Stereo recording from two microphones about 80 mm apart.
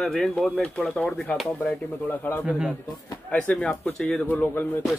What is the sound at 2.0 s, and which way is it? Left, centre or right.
Speech, left.